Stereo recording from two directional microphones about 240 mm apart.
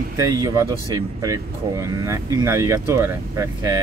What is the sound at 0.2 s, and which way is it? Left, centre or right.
Speech, centre.